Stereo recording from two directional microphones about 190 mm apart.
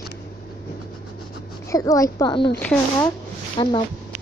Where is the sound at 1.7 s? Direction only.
15° left (ahead or behind).